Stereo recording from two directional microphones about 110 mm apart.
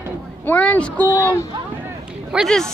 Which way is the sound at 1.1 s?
25° left (ahead or behind).